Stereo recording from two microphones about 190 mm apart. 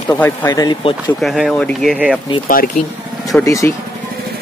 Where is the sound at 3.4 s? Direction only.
15° left (ahead or behind).